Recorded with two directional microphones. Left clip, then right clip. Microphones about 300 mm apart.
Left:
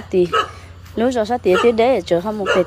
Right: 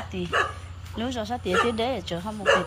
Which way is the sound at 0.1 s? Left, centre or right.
Centre.